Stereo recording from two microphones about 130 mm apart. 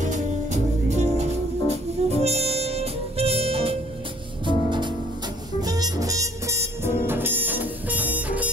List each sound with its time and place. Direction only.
0.0 s music: 65° right (ahead or behind); by 3.7 s 45° right (ahead or behind)
4.5 s music: 35° right (ahead or behind); by 8.5 s 10° right (ahead or behind)